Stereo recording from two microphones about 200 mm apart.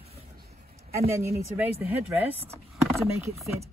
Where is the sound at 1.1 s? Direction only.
15° right (ahead or behind).